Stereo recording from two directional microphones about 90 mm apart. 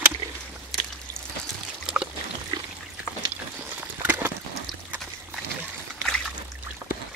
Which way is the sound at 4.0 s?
20° right (ahead or behind).